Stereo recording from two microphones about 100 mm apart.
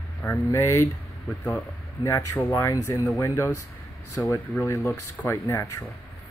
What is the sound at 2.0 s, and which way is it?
Speech, 30° left (ahead or behind).